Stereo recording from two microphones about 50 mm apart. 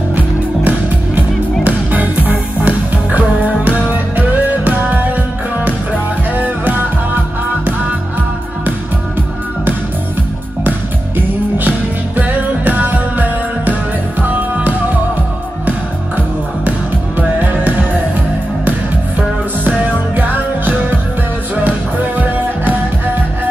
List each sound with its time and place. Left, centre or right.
0.7 s music: right
11.1 s music: right
17.4 s music: right
19.1 s music: right